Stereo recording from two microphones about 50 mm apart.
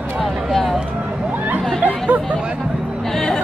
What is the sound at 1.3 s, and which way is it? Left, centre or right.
Chatter, right.